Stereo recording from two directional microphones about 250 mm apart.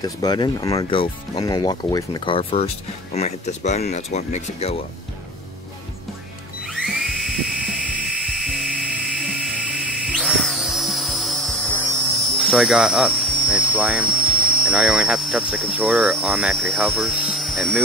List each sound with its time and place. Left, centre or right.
0.0 s speech: centre
6.6 s dental drill: centre
12.4 s speech: centre